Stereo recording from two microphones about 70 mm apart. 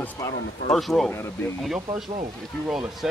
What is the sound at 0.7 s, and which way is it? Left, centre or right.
Speech, centre.